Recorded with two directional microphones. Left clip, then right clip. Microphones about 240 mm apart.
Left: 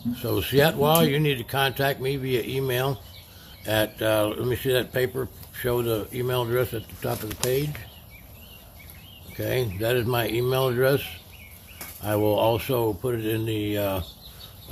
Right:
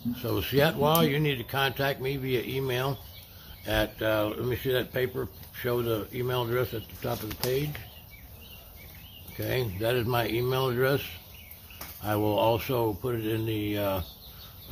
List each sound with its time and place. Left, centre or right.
0.1 s speech: centre
9.4 s speech: centre